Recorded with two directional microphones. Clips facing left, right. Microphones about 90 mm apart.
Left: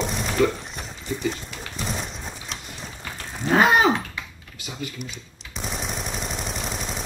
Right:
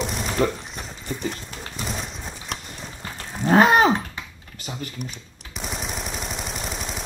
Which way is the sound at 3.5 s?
35° right (ahead or behind).